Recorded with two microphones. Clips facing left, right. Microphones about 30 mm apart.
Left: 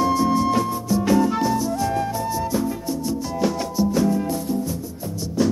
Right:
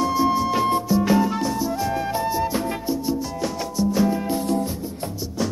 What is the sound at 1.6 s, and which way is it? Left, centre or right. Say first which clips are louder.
Music: left 1 dB; centre.